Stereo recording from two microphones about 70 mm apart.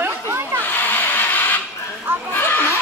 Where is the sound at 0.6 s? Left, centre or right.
Left.